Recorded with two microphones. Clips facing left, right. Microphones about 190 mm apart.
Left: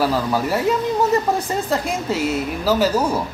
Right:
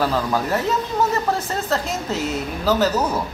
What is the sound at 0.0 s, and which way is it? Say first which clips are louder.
Speech: left 2 dB; 10° left (ahead or behind).